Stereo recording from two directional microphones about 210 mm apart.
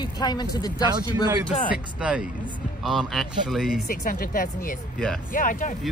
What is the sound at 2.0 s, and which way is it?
A man's voice, 5° right (ahead or behind).